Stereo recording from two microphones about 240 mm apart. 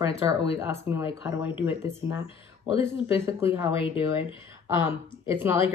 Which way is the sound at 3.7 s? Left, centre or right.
Left.